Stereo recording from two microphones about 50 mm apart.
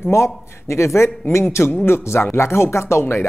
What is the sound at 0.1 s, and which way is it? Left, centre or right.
A man's voice, left.